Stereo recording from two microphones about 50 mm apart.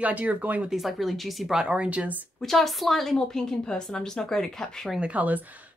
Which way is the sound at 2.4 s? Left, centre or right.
Centre.